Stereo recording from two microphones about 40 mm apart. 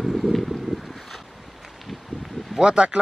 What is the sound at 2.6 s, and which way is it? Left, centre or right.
Speech, right.